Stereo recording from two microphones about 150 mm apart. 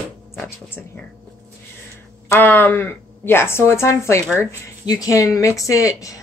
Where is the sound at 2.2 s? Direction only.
15° left (ahead or behind).